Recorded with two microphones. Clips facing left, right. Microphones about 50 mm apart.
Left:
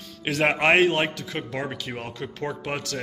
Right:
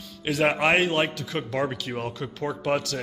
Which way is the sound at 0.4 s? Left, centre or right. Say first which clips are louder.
Left 2 dB; left.